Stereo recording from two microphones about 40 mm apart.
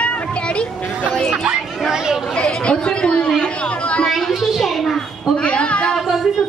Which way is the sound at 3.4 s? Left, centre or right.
Left.